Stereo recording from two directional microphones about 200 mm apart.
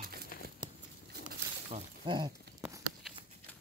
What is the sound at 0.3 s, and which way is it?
Patter, 45° left (ahead or behind).